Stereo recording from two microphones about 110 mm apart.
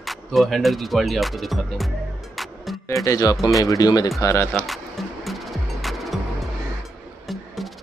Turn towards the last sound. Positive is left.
turn(degrees=0)  # may be behind; listen again after turning